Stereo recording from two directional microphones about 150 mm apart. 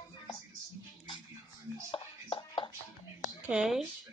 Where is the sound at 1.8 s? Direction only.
35° left (ahead or behind).